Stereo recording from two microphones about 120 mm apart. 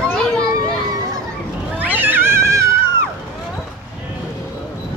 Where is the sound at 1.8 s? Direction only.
15° right (ahead or behind).